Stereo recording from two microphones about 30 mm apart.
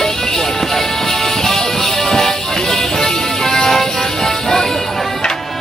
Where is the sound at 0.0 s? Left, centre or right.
Centre.